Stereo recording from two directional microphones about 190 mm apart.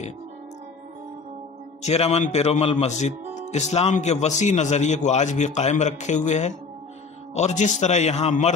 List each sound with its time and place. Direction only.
1.8 s a man's voice: 35° left (ahead or behind)